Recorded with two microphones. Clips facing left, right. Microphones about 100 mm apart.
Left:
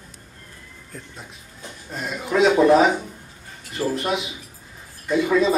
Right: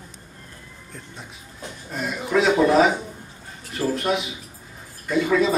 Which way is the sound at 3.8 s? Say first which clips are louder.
Even; 20° left (ahead or behind).